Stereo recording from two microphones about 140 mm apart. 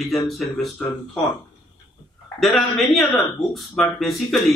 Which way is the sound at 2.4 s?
Centre (ahead or behind).